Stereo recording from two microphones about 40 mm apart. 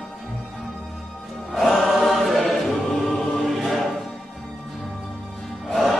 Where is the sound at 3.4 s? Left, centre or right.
Centre.